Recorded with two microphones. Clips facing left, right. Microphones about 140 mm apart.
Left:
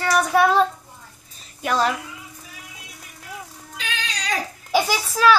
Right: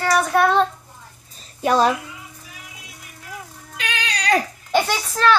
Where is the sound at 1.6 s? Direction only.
25° right (ahead or behind).